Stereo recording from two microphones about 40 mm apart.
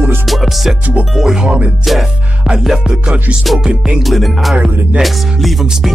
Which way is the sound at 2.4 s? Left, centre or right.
Centre.